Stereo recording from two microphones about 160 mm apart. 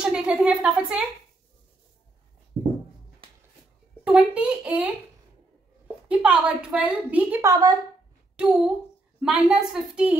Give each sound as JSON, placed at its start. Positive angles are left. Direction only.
{"t": 0.0, "sound": "a woman's voice", "side_deg": -5}
{"t": 4.0, "sound": "a woman's voice", "side_deg": -5}
{"t": 6.0, "sound": "a woman's voice", "side_deg": -10}
{"t": 7.4, "sound": "a woman's voice", "side_deg": -25}
{"t": 8.4, "sound": "a woman's voice", "side_deg": -5}